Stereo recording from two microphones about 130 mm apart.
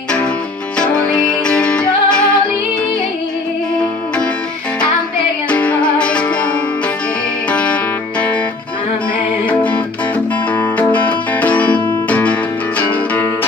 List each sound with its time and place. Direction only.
0.7 s music: 5° left (ahead or behind)
4.7 s music: 10° left (ahead or behind)
7.5 s music: 10° left (ahead or behind)
9.5 s music: 10° left (ahead or behind)